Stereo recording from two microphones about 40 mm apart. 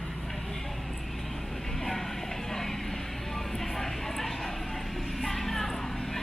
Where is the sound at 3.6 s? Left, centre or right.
Centre.